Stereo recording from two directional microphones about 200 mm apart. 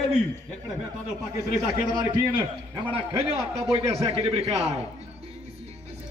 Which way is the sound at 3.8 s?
25° right (ahead or behind).